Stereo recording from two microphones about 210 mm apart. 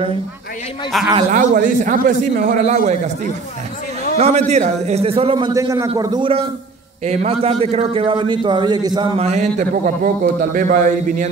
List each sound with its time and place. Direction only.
0.9 s a man's voice: centre (ahead or behind)
1.3 s a man's voice: 40° right (ahead or behind)
4.2 s a man's voice: 35° right (ahead or behind)